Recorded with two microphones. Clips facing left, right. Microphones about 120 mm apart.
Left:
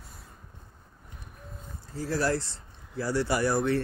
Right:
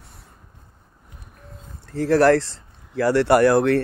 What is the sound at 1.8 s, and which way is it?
Speech, 70° right (ahead or behind).